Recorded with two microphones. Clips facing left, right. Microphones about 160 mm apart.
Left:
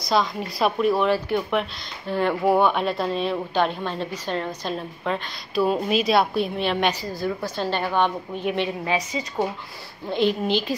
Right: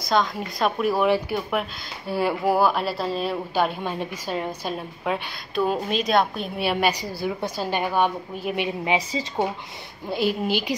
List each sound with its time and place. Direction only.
0.1 s a woman's voice: centre (ahead or behind)
5.5 s a woman's voice: centre (ahead or behind)
6.6 s speech: 10° right (ahead or behind)
8.9 s a woman's voice: 20° right (ahead or behind)
10.1 s speech: 5° right (ahead or behind)